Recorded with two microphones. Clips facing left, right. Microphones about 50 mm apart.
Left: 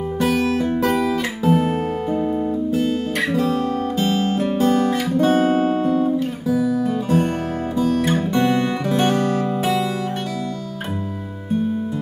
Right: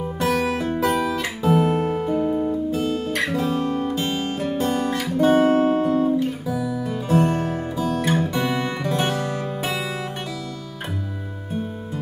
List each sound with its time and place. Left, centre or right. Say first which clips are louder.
0.2 s music: left 2 dB; centre
1.1 s guitar: left 2 dB; centre
3.4 s guitar: left 2 dB; centre
4.0 s guitar: left 5 dB; centre
8.3 s music: left 5 dB; centre